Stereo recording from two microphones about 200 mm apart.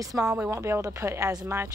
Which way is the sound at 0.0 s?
15° right (ahead or behind).